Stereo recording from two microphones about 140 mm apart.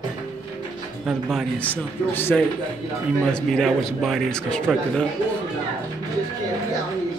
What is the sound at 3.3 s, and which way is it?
Speech, centre (ahead or behind).